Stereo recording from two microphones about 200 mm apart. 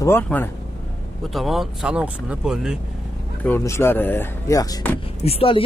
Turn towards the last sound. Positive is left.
turn(degrees=30)  # may be behind; listen again after turning